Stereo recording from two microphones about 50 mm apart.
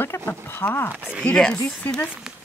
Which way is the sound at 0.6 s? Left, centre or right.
Left.